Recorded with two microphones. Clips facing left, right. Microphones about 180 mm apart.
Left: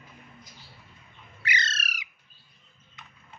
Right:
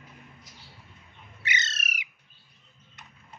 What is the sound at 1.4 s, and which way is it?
Bird, 25° right (ahead or behind).